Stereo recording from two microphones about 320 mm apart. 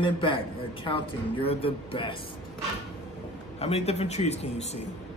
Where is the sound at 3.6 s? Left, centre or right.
Centre.